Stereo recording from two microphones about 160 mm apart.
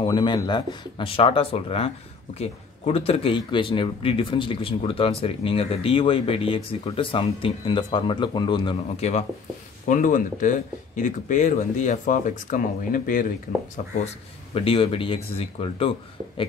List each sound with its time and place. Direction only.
0.0 s speech: 30° left (ahead or behind)
9.0 s speech: 45° left (ahead or behind)
9.8 s speech: 55° left (ahead or behind)
14.0 s speech: 35° left (ahead or behind)